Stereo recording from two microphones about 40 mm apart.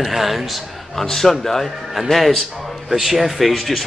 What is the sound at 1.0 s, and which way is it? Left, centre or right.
A man's voice, centre.